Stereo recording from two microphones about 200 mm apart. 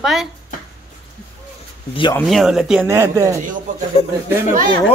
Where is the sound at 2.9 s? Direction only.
15° right (ahead or behind).